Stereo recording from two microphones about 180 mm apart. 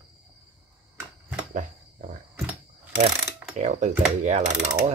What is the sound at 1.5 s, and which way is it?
Cricket, 45° right (ahead or behind).